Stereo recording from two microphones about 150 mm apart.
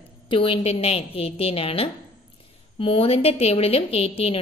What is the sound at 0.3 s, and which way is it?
A woman's voice, 35° left (ahead or behind).